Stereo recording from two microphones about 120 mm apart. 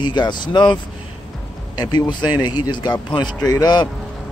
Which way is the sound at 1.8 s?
35° left (ahead or behind).